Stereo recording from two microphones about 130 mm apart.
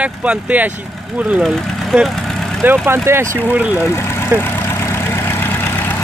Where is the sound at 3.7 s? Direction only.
20° left (ahead or behind).